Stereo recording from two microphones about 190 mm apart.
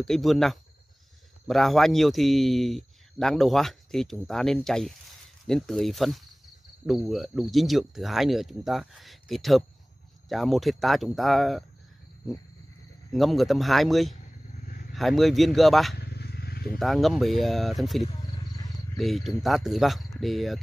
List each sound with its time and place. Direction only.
0.0 s a man's voice: centre (ahead or behind)
16.0 s vehicle: 60° left (ahead or behind)
16.7 s a man's voice: centre (ahead or behind)